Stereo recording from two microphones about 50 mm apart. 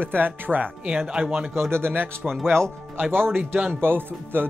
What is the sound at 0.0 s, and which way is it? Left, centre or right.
Speech, right.